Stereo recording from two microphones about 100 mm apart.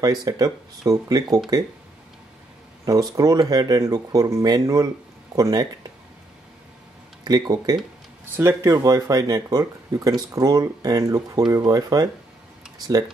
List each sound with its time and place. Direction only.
0.0 s speech: 40° right (ahead or behind)
2.8 s speech: 40° right (ahead or behind)
7.2 s speech: 40° right (ahead or behind)